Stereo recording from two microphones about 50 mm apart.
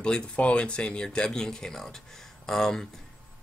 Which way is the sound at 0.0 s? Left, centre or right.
Centre.